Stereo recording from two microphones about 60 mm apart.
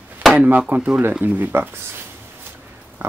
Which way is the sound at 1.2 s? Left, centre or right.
Right.